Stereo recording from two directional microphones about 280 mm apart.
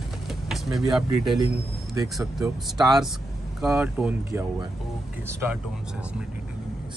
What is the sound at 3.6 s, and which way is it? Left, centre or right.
Speech, centre.